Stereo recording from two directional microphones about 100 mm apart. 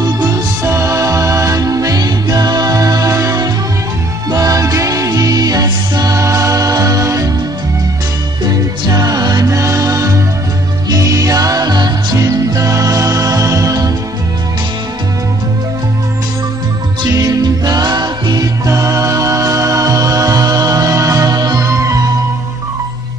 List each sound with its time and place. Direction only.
0.3 s music: 30° right (ahead or behind)
8.5 s music: 40° right (ahead or behind)
17.0 s music: 40° right (ahead or behind)